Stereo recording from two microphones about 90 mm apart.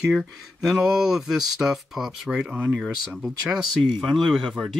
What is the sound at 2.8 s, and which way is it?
Speech, 5° left (ahead or behind).